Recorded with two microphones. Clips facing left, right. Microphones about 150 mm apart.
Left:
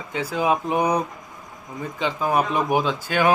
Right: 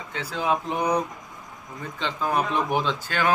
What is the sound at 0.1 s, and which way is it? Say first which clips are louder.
Speech: left 4 dB; 10° left (ahead or behind).